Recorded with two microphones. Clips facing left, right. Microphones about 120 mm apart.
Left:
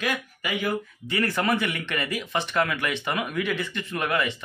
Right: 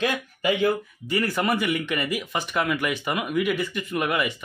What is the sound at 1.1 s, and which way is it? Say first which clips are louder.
Speech: right 1 dB; 5° right (ahead or behind).